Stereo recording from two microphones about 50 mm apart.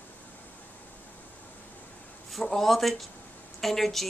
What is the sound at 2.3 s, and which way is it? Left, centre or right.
Speech, centre.